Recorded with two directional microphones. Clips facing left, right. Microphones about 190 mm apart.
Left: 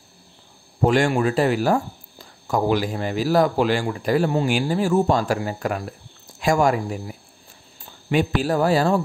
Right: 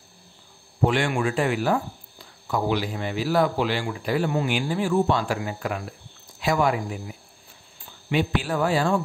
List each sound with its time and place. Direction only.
0.8 s speech: 40° left (ahead or behind)